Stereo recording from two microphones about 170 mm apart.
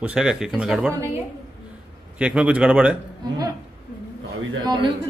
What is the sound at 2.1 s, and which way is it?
Speech, 5° right (ahead or behind).